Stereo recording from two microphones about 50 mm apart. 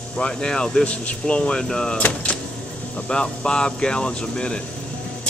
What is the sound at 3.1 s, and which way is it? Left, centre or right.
Speech, centre.